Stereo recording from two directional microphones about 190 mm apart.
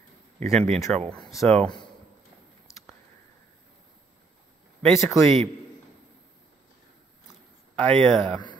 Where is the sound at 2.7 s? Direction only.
15° left (ahead or behind).